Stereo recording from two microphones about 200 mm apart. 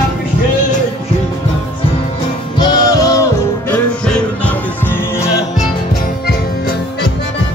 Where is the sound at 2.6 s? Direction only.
20° left (ahead or behind).